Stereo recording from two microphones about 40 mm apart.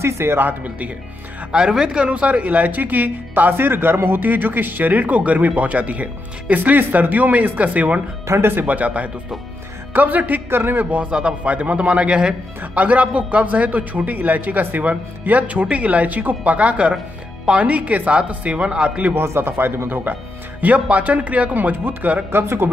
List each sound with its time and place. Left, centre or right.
0.4 s speech: right
1.5 s speech: centre
2.0 s speech: right
4.2 s speech: right
8.4 s a man's voice: right
8.6 s speech: right
10.5 s a man's voice: right
11.0 s speech: right
11.4 s speech: right
12.7 s speech: right
14.8 s speech: right
19.1 s speech: right
20.6 s speech: right
22.3 s speech: right